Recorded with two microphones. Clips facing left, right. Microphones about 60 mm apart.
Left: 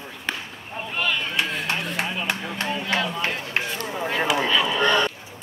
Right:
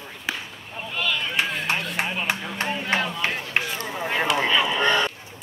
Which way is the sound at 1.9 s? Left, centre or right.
Right.